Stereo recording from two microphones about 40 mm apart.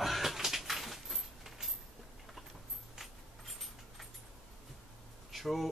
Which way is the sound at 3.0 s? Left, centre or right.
Centre.